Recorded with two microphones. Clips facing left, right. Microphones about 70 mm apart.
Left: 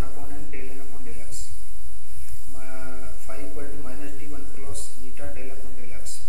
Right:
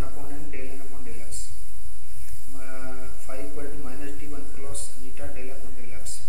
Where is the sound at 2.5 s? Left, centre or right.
Centre.